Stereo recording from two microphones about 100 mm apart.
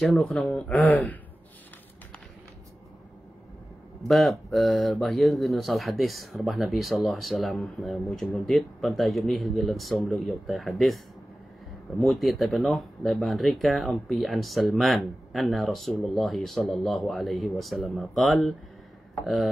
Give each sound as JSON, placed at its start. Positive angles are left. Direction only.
{"t": 0.0, "sound": "speech", "side_deg": 0}
{"t": 0.8, "sound": "speech", "side_deg": 15}
{"t": 4.1, "sound": "speech", "side_deg": 0}
{"t": 12.0, "sound": "speech", "side_deg": 0}